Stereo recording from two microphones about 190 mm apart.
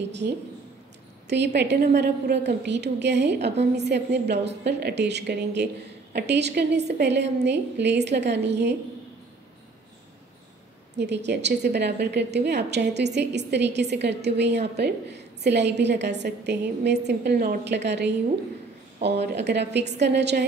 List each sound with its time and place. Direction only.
0.2 s a woman's voice: 55° right (ahead or behind)
11.0 s a woman's voice: 65° right (ahead or behind)